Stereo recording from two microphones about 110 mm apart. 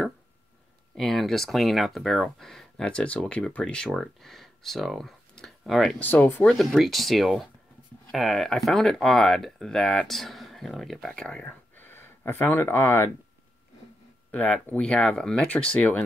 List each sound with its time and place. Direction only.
0.9 s speech: centre (ahead or behind)
5.9 s speech: 15° left (ahead or behind)
6.4 s speech: centre (ahead or behind); by 13.1 s 20° left (ahead or behind)
14.3 s speech: 10° left (ahead or behind)